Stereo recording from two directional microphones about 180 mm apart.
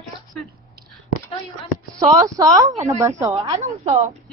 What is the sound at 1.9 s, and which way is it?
A woman's voice, 20° right (ahead or behind).